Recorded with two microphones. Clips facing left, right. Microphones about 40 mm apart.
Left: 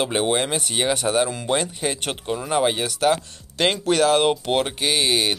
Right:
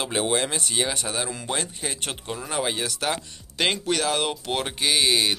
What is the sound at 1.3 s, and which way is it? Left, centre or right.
Speech, centre.